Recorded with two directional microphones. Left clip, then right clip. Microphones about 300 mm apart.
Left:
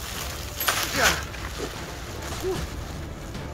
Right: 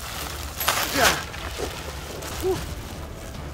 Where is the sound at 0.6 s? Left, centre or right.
Right.